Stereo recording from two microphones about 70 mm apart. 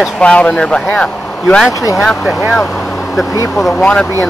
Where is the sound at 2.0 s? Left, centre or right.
Centre.